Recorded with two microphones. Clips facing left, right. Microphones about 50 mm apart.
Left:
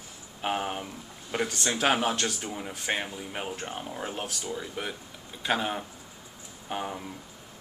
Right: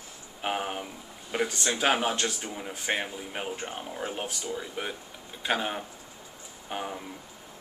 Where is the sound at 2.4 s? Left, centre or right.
Centre.